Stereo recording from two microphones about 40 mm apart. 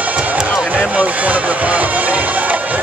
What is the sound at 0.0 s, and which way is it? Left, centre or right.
Music, right.